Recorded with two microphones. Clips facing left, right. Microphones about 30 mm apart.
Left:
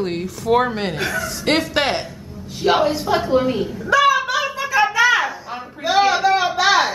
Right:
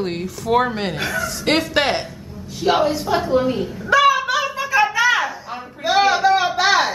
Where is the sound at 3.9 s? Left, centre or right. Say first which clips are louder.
Right 1 dB; centre.